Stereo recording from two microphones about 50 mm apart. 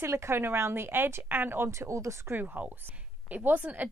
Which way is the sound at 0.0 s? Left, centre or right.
Right.